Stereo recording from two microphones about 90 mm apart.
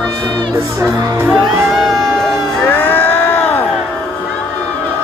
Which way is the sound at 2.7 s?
20° left (ahead or behind).